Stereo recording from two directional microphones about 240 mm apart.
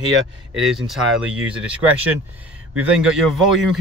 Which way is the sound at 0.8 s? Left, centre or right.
Centre.